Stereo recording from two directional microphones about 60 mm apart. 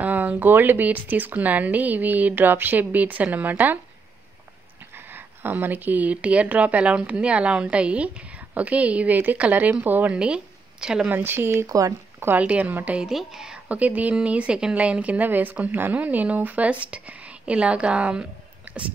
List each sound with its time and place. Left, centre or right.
0.0 s speech: right
4.9 s speech: right
10.1 s speech: centre
11.1 s speech: right
11.5 s speech: right
12.4 s speech: right
13.1 s a woman's voice: centre
13.7 s speech: right